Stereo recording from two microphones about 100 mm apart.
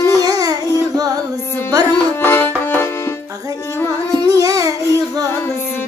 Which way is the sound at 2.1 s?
20° left (ahead or behind).